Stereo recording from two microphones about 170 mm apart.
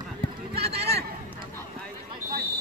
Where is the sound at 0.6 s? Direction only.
35° right (ahead or behind).